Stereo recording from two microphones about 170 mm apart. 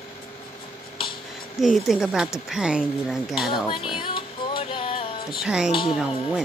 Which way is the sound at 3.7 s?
30° left (ahead or behind).